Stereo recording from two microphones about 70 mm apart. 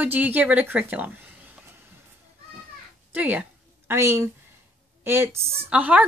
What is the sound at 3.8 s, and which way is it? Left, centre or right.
Speech, right.